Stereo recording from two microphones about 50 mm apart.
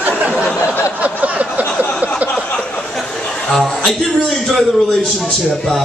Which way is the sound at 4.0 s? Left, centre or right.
Centre.